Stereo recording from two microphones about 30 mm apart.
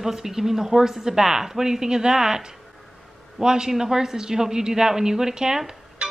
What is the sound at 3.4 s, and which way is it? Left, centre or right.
Speech, right.